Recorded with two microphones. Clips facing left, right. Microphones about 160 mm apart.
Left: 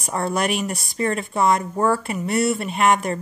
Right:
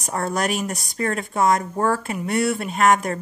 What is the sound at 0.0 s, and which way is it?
Speech, 40° right (ahead or behind).